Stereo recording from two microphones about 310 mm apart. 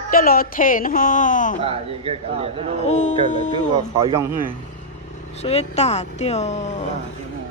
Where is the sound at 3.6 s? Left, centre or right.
Centre.